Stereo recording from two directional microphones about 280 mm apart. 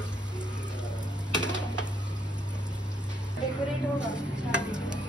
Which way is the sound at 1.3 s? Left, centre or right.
Centre.